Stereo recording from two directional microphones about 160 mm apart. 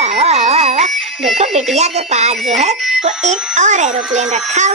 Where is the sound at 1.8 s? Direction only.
45° right (ahead or behind).